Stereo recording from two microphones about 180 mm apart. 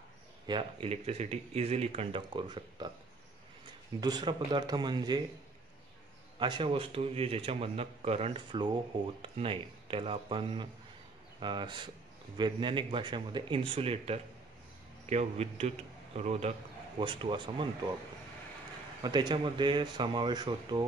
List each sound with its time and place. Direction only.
0.5 s speech: 30° right (ahead or behind)
4.0 s speech: 25° right (ahead or behind)
6.4 s speech: 25° right (ahead or behind)
17.0 s speech: 25° right (ahead or behind)
19.0 s speech: 25° right (ahead or behind)